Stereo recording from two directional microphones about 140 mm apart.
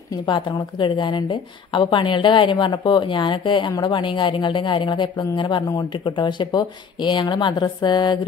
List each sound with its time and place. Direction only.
0.3 s speech: 35° left (ahead or behind)